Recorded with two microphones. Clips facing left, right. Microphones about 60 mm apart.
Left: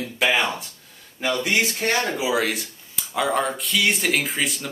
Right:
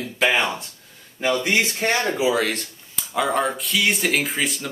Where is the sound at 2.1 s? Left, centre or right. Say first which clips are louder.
Right 2 dB; centre.